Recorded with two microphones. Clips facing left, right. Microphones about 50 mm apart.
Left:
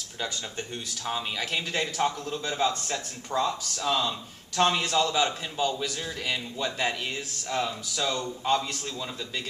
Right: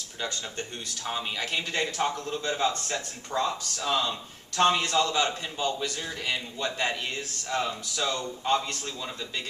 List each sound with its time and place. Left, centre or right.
0.2 s a man's voice: centre
3.7 s a man's voice: centre